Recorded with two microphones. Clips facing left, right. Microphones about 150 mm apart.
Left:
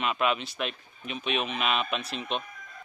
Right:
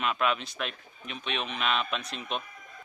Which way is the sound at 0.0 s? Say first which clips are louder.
Left 1 dB; 5° left (ahead or behind).